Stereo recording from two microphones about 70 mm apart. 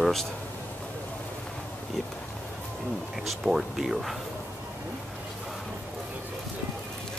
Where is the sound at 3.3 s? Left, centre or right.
Centre.